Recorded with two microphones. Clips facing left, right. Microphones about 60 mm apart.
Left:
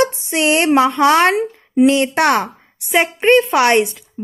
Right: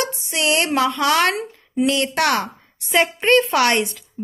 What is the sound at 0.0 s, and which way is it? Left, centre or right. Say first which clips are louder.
A woman's voice: left 7 dB; left.